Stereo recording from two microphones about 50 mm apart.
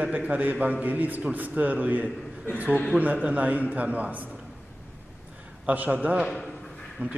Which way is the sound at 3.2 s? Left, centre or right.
Right.